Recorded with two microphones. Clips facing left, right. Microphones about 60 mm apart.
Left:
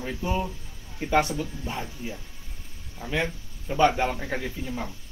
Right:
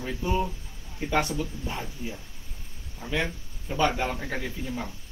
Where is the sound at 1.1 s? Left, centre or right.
Centre.